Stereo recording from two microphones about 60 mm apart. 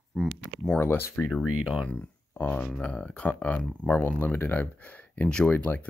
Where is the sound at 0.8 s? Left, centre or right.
Left.